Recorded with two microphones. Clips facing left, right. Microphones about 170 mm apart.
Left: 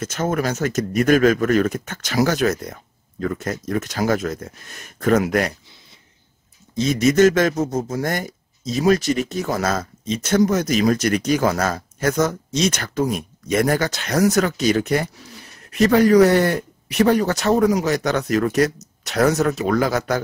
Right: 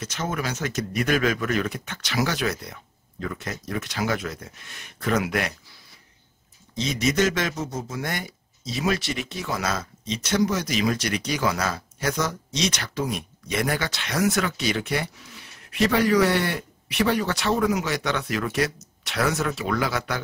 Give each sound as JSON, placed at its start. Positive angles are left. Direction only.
{"t": 0.0, "sound": "speech", "side_deg": 50}
{"t": 6.7, "sound": "speech", "side_deg": 50}